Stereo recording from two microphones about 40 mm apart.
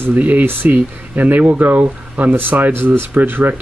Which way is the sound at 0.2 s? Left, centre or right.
Right.